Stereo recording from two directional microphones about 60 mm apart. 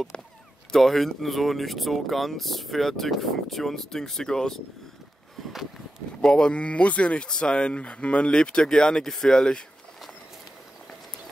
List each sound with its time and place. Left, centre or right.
0.7 s speech: centre
6.2 s speech: centre